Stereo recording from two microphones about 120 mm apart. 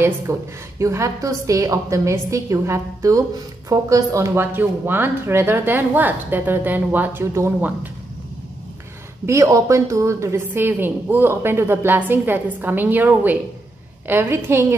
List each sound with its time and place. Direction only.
0.0 s a woman's voice: 25° right (ahead or behind)
9.2 s a woman's voice: 25° right (ahead or behind)